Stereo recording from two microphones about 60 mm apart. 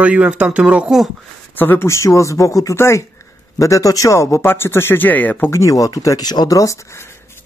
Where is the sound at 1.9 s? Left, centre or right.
Left.